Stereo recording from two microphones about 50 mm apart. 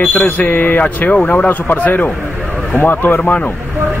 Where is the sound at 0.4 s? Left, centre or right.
Left.